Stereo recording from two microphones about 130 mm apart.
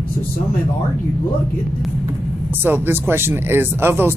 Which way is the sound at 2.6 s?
15° right (ahead or behind).